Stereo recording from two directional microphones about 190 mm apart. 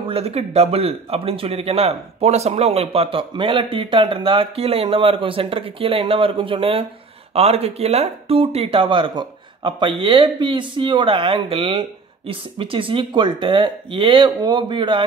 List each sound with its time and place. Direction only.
0.0 s a man's voice: 30° right (ahead or behind)